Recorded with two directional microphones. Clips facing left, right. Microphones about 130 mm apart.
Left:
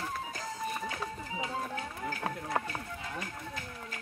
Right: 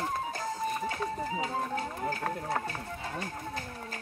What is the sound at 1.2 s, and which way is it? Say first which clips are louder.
Music: right 4 dB; 35° right (ahead or behind).